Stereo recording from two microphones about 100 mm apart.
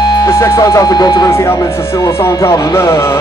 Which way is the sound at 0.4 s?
35° left (ahead or behind).